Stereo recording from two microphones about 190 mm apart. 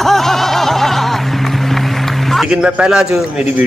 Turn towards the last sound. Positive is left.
turn(degrees=-5)  # may be behind; listen again after turning